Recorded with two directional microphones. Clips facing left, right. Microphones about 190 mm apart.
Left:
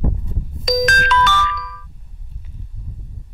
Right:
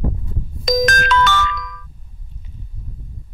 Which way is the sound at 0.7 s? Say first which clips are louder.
Right 1 dB; 40° right (ahead or behind).